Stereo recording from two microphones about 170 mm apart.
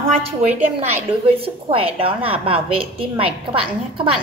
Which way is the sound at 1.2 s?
35° right (ahead or behind).